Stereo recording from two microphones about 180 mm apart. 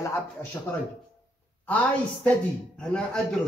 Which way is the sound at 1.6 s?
10° left (ahead or behind).